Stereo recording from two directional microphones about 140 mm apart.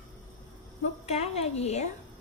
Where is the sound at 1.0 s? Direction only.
45° left (ahead or behind).